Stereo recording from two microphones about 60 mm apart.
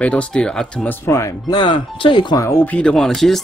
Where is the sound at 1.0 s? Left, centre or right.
Left.